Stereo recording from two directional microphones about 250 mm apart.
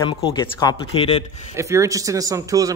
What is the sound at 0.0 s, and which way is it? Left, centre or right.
Speech, centre.